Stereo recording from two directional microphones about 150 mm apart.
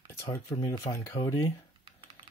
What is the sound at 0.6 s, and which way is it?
Speech, 20° left (ahead or behind).